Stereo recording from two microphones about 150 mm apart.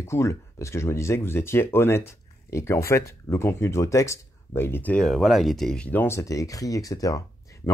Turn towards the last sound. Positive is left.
turn(degrees=20)  # may be behind; listen again after turning